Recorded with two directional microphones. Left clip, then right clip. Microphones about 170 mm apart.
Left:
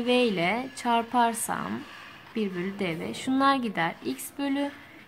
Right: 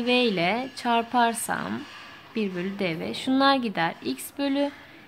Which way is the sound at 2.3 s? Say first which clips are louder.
Right 2 dB; 15° right (ahead or behind).